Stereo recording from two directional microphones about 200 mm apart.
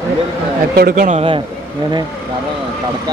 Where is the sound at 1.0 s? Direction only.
30° right (ahead or behind).